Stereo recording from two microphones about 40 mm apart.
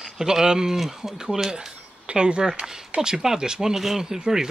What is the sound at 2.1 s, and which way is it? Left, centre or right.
Speech, right.